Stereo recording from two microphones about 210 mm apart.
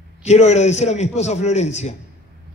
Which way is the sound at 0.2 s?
30° left (ahead or behind).